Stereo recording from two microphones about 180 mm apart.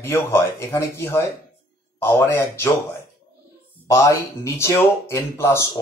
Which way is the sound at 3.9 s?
15° left (ahead or behind).